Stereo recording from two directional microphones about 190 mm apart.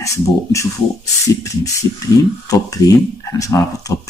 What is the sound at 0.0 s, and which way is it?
Speech, 15° left (ahead or behind).